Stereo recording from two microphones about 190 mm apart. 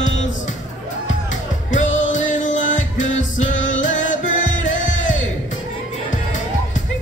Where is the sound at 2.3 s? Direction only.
40° left (ahead or behind).